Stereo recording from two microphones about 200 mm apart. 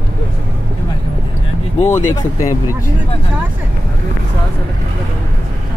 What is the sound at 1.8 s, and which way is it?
Speech, 40° left (ahead or behind).